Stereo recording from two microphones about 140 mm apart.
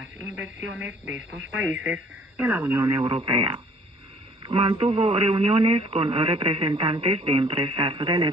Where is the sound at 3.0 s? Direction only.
35° right (ahead or behind).